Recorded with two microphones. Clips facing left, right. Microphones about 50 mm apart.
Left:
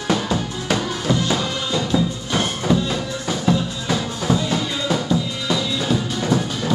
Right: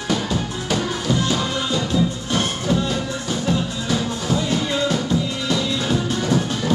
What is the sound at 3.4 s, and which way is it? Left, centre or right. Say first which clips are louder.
Music: left 3 dB; left.